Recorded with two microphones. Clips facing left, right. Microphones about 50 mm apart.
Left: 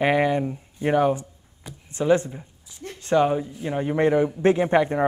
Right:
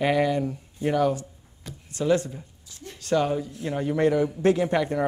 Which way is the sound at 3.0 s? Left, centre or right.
Left.